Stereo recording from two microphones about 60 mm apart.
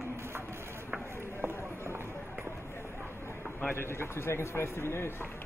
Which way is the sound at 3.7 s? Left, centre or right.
Left.